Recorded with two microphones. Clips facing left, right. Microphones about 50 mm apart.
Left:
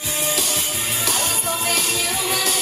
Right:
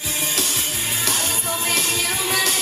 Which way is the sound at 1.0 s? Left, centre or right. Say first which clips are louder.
Left 2 dB; centre.